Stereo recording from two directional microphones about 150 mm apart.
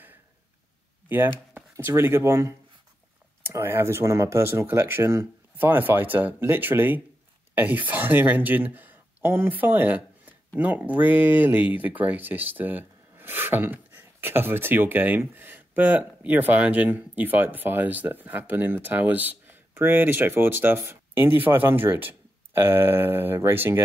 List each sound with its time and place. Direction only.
1.0 s speech: 15° right (ahead or behind)